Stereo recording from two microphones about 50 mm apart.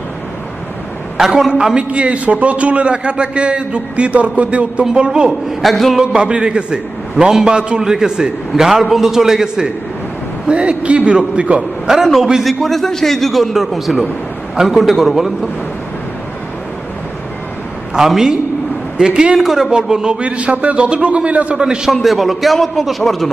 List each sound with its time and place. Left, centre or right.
1.1 s a man's voice: centre
1.8 s a man's voice: right
4.8 s a man's voice: centre
5.6 s a man's voice: centre
5.9 s a man's voice: centre
10.5 s a man's voice: right
11.9 s a man's voice: centre
17.9 s a man's voice: centre; by 21.5 s right
21.5 s a man's voice: centre
21.9 s a man's voice: centre